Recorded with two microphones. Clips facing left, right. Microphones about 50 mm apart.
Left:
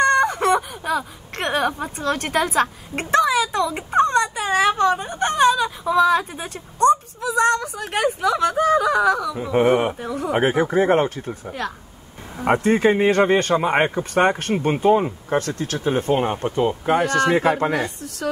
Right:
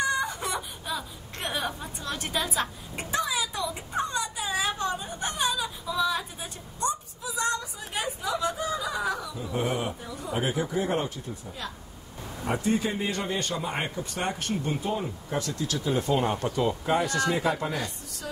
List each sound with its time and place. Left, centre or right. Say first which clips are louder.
0.0 s speech: left 11 dB; left
16.9 s speech: left 9 dB; left